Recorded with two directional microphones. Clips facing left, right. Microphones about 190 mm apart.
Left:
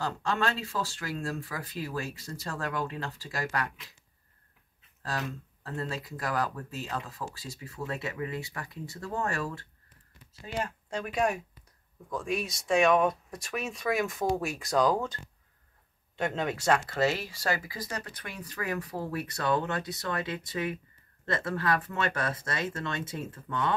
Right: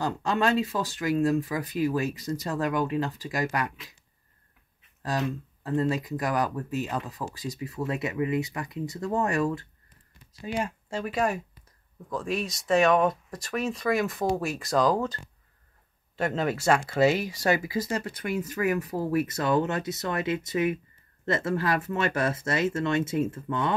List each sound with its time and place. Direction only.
0.0 s speech: 20° right (ahead or behind)
5.0 s speech: 20° right (ahead or behind); by 15.1 s centre (ahead or behind)
16.2 s speech: 5° right (ahead or behind); by 23.7 s 20° right (ahead or behind)